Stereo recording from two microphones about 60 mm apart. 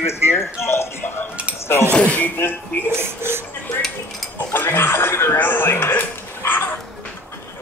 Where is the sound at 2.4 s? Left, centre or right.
Left.